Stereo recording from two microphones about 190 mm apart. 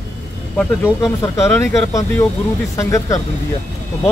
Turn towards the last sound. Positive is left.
turn(degrees=15)  # may be behind; listen again after turning